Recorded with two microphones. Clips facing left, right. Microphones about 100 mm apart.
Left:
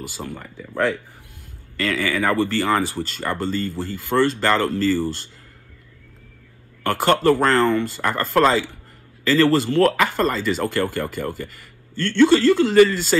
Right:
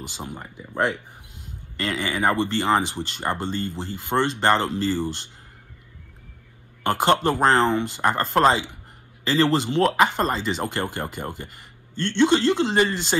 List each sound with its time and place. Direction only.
0.0 s speech: 20° right (ahead or behind)
7.1 s speech: 20° right (ahead or behind)